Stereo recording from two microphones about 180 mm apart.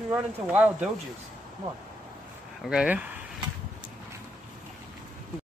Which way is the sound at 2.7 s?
5° right (ahead or behind).